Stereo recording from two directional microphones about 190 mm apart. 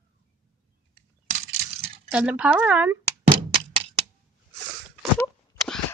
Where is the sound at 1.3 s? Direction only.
35° right (ahead or behind).